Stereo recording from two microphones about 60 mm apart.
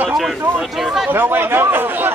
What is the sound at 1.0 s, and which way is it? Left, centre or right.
Speech, right.